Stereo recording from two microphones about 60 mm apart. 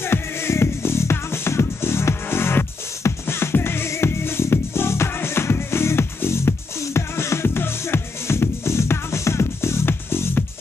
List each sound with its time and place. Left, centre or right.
0.0 s music: left